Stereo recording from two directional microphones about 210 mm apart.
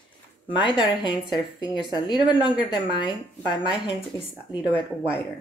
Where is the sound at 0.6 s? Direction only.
20° left (ahead or behind).